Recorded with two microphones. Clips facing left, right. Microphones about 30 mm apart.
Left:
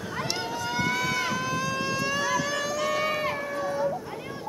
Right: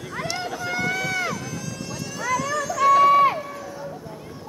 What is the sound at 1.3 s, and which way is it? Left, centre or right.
Run, left.